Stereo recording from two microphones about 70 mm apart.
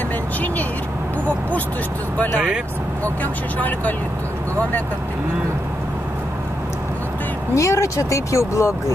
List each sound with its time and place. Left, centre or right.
3.5 s speech: left
7.5 s speech: left